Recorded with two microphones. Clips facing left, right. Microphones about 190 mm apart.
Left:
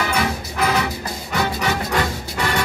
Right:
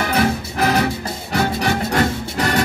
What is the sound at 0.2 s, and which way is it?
Music, 50° right (ahead or behind).